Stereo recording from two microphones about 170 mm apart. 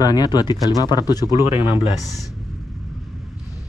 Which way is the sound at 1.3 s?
15° right (ahead or behind).